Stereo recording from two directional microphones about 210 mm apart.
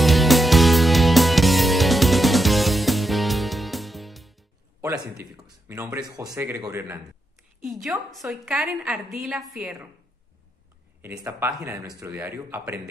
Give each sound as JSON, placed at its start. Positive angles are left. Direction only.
{"t": 0.0, "sound": "music", "side_deg": 0}
{"t": 5.4, "sound": "speech", "side_deg": -10}
{"t": 7.6, "sound": "a woman's voice", "side_deg": 0}
{"t": 11.0, "sound": "speech", "side_deg": -10}